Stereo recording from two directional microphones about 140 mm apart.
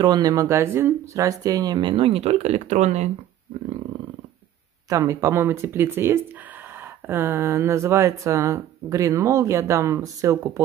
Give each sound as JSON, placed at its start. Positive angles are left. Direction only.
{"t": 0.0, "sound": "speech", "side_deg": -30}
{"t": 4.8, "sound": "speech", "side_deg": -25}